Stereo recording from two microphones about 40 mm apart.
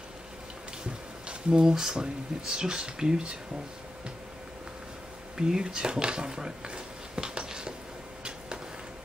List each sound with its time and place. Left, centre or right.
1.5 s speech: centre
5.4 s a sound: centre
8.2 s arrow: right